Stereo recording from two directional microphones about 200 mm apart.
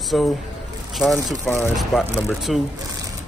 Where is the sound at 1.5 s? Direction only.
Centre (ahead or behind).